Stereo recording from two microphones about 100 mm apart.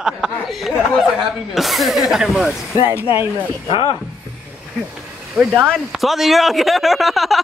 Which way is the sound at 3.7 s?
65° left (ahead or behind).